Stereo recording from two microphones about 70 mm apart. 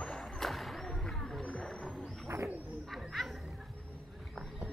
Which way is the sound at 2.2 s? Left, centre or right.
Right.